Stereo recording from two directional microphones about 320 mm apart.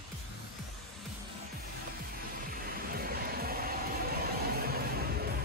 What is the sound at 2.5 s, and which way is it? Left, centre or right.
Music, right.